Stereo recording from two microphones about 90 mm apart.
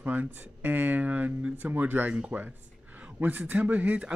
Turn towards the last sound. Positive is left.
turn(degrees=-15)  # may be behind; listen again after turning